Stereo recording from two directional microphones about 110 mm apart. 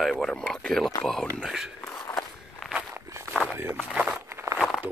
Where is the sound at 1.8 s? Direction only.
25° left (ahead or behind).